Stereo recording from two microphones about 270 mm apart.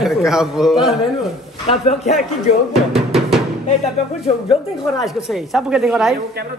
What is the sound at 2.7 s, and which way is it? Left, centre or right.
Drum, centre.